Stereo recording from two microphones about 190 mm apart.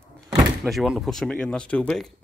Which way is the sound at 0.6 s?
Centre (ahead or behind).